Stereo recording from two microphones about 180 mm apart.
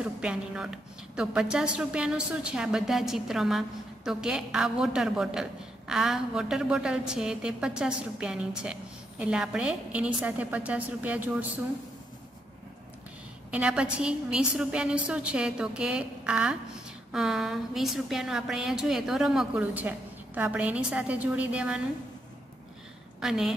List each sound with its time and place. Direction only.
0.0 s a woman's voice: 5° right (ahead or behind)
13.5 s a woman's voice: 5° right (ahead or behind)
23.2 s a woman's voice: 5° right (ahead or behind)